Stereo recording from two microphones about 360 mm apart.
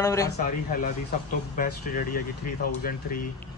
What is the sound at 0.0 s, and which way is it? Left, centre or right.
Speech, centre.